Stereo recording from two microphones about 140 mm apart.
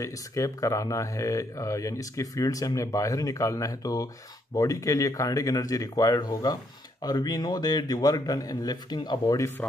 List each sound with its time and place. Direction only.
0.0 s speech: 20° left (ahead or behind)